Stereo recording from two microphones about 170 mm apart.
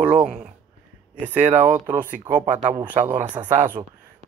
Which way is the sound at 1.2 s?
45° right (ahead or behind).